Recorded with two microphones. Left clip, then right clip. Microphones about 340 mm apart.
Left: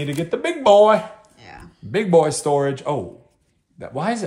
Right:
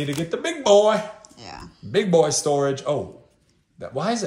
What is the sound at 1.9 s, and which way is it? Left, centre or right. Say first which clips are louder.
A man's voice: left 2 dB; left.